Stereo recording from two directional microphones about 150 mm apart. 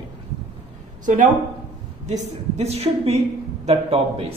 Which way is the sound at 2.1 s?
50° right (ahead or behind).